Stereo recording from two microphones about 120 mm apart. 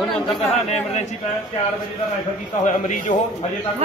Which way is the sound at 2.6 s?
85° left.